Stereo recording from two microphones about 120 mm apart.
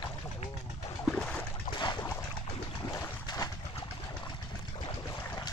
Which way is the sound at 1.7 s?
40° left (ahead or behind).